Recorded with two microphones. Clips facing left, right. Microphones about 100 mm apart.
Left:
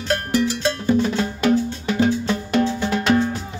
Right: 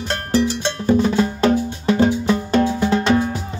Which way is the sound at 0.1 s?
30° right (ahead or behind).